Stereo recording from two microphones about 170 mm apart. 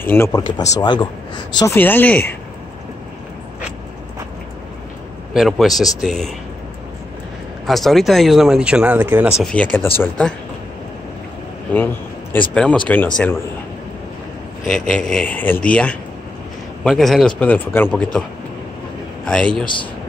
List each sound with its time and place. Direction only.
0.0 s speech: 15° left (ahead or behind)
1.6 s speech: 15° left (ahead or behind)
5.3 s speech: centre (ahead or behind)
7.6 s speech: centre (ahead or behind)
9.4 s speech: 5° left (ahead or behind)
11.7 s speech: 10° left (ahead or behind)
14.7 s speech: 5° left (ahead or behind)
19.2 s a man's voice: 5° left (ahead or behind)
19.6 s speech: 30° left (ahead or behind)